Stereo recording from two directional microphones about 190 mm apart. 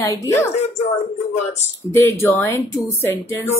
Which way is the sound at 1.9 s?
15° left (ahead or behind).